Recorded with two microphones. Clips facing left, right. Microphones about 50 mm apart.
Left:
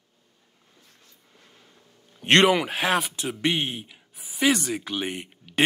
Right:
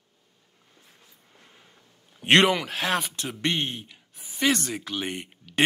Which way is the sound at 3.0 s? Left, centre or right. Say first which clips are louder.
Left 3 dB; centre.